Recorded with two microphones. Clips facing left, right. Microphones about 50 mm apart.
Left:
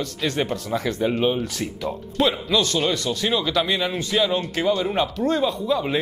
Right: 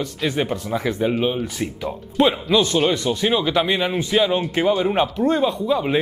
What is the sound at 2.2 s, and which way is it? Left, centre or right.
A man's voice, centre.